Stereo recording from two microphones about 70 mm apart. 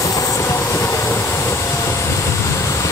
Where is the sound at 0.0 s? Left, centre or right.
Left.